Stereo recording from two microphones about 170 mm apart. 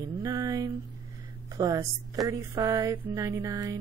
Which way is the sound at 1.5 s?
20° right (ahead or behind).